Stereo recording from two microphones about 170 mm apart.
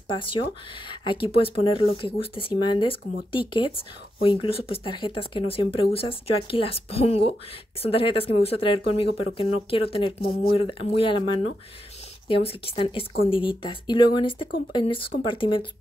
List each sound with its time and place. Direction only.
0.1 s speech: 30° left (ahead or behind)